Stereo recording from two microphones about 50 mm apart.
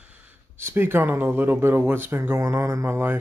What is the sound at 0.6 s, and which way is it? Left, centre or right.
Speech, right.